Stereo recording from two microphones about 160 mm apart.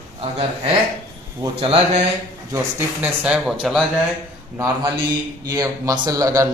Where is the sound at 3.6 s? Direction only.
Centre (ahead or behind).